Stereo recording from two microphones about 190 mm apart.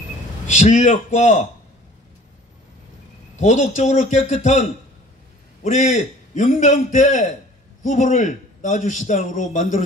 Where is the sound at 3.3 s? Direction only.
40° left (ahead or behind).